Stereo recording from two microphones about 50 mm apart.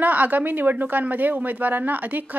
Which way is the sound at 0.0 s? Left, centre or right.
Right.